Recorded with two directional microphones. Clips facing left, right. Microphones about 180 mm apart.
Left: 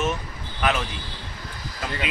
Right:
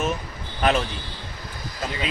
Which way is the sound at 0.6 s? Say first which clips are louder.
Right 3 dB; 35° right (ahead or behind).